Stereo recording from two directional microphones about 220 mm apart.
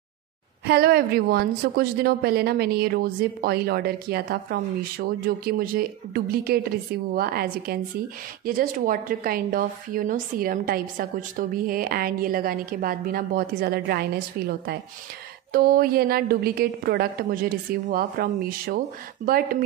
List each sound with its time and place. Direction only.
0.7 s a woman's voice: 45° right (ahead or behind)